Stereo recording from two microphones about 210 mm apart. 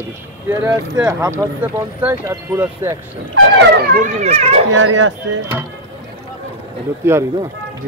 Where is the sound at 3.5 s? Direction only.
45° right (ahead or behind).